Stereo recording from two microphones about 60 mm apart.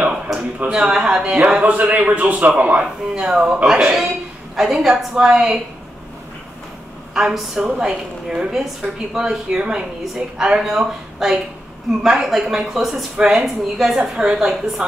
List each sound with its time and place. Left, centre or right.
0.3 s a sound: centre
0.7 s a man's voice: centre
7.2 s a woman's voice: centre